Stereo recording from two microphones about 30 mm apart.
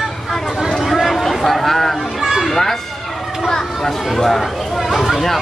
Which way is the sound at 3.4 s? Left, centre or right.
Centre.